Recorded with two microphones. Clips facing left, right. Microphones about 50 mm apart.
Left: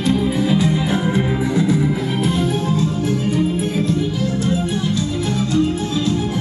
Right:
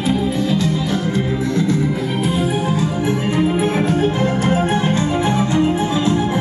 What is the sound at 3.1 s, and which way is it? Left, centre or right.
Music, right.